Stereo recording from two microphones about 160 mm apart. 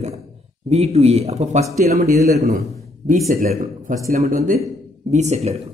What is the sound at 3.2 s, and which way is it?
Speech, 65° right (ahead or behind).